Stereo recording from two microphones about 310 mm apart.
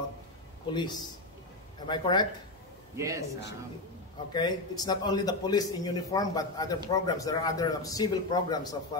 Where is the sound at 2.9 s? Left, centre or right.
Centre.